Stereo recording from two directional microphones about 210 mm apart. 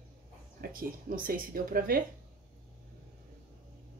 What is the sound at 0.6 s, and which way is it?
A woman's voice, 45° right (ahead or behind).